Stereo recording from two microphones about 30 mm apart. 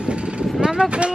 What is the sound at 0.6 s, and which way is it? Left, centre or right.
Vehicle, right.